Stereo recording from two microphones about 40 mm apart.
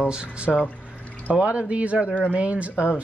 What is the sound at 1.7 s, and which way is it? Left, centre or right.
A woman's voice, right.